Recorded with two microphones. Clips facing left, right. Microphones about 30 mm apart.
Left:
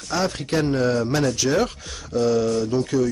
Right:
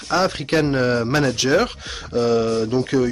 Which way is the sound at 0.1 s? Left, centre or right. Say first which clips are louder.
Right 4 dB; right.